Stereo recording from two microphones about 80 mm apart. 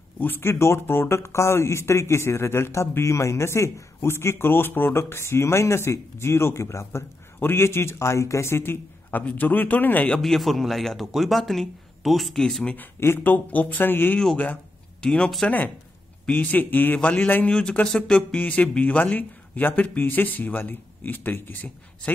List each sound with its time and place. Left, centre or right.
0.2 s speech: left
10.2 s a man's voice: centre
12.7 s speech: left
15.0 s speech: centre
16.3 s speech: left